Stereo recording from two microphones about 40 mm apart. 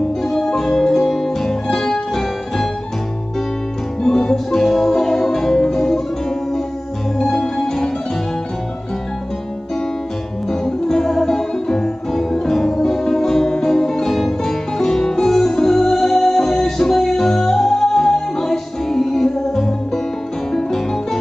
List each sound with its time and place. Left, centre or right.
0.2 s music: centre
4.0 s music: centre
7.2 s music: centre
10.5 s music: centre